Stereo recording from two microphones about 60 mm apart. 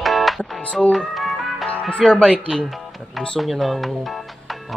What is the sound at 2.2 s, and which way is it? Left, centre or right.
Speech, centre.